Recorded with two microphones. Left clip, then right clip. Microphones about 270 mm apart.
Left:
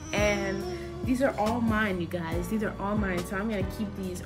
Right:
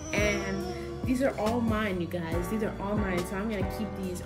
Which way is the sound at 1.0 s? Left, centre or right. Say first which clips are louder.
Left 2 dB; centre.